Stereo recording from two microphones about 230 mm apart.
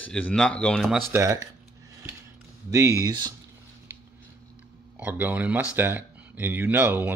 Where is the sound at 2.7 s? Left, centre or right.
Centre.